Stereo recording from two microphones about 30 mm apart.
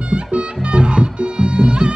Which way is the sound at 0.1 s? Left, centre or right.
Right.